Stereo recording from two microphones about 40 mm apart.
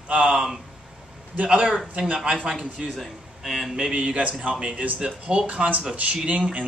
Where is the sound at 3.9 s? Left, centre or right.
Right.